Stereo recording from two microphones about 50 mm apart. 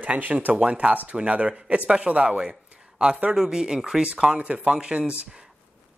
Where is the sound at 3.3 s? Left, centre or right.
Centre.